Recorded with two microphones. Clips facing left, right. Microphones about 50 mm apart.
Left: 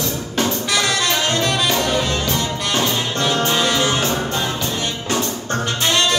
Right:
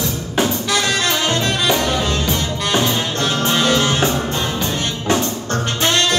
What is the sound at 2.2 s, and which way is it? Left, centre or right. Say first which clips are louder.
Music: right 1 dB; centre.